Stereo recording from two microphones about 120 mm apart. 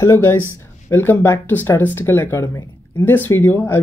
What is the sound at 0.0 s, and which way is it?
Speech, 25° left (ahead or behind).